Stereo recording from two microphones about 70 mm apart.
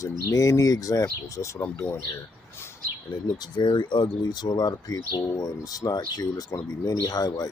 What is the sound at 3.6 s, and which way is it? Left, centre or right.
Speech, left.